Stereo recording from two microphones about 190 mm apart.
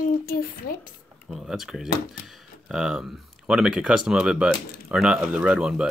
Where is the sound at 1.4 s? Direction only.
Centre (ahead or behind).